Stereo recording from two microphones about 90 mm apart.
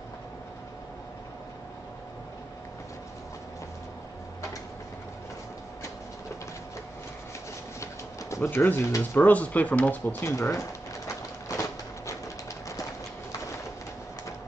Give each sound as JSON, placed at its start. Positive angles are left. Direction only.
{"t": 8.4, "sound": "speech", "side_deg": 20}
{"t": 8.8, "sound": "speech", "side_deg": 35}
{"t": 9.2, "sound": "speech", "side_deg": 15}
{"t": 10.2, "sound": "a sound", "side_deg": 35}